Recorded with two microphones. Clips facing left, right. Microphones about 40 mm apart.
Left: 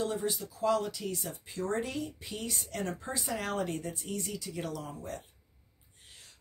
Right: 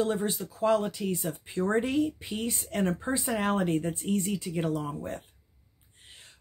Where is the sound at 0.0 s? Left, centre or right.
Right.